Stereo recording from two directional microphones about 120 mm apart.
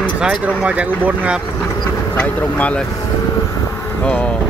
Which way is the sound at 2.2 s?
10° left (ahead or behind).